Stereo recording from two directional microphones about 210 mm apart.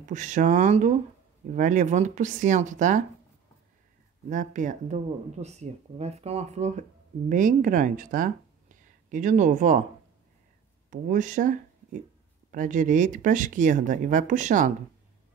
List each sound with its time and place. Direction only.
0.0 s speech: 35° right (ahead or behind)
4.3 s speech: 35° right (ahead or behind)
10.9 s speech: 40° right (ahead or behind)